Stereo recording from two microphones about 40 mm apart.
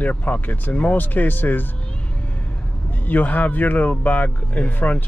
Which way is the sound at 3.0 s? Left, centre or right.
Left.